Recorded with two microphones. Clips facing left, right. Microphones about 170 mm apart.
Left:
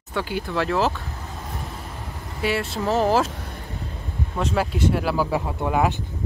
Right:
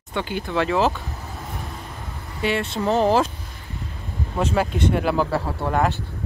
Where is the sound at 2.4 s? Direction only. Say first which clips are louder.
Right 1 dB; 5° left (ahead or behind).